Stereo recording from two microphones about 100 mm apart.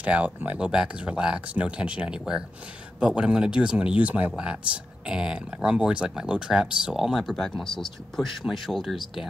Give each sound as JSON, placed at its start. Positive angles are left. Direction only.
{"t": 0.0, "sound": "speech", "side_deg": -15}